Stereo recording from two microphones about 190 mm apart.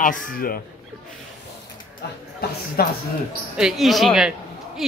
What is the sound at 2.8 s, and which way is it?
Speech, 55° left (ahead or behind).